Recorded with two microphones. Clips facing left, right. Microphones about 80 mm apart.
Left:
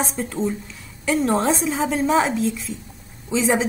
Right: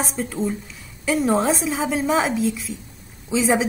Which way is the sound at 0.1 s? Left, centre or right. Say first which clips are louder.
Even; centre.